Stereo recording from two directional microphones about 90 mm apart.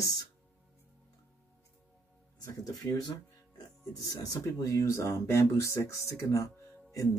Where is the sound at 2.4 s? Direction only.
40° left (ahead or behind).